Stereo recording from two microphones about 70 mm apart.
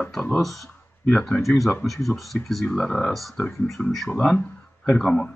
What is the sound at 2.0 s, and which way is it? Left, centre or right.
Speech, centre.